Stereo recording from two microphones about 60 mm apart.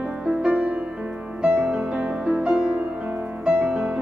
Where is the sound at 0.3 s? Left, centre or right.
Centre.